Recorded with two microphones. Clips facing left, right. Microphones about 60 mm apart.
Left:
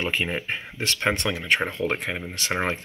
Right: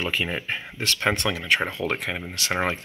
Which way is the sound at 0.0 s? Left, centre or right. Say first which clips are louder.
Even; left.